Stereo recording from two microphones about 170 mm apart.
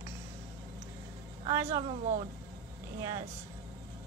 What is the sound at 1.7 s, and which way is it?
Speech, 35° right (ahead or behind).